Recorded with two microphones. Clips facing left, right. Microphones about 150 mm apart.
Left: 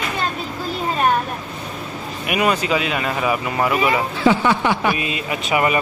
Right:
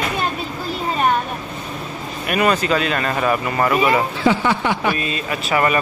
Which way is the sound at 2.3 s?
10° left (ahead or behind).